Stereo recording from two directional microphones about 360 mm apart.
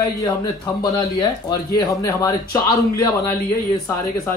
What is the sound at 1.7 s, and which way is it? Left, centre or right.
Speech, centre.